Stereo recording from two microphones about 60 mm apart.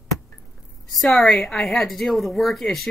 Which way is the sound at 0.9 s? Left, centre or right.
Centre.